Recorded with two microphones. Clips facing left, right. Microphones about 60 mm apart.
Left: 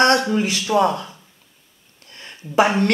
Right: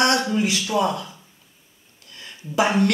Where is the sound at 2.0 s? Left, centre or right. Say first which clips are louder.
Left 1 dB; left.